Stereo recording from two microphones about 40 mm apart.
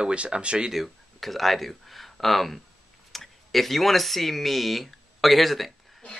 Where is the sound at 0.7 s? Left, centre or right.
Centre.